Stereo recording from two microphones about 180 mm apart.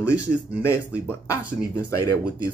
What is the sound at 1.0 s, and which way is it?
Speech, 20° left (ahead or behind).